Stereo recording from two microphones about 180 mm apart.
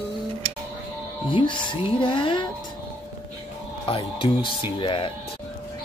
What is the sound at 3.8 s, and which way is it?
Speech, 30° left (ahead or behind).